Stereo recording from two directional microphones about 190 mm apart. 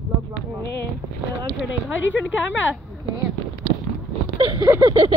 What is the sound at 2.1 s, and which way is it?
Speech, 85° left.